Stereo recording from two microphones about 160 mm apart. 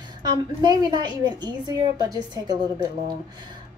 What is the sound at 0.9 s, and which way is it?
A woman's voice, 25° right (ahead or behind).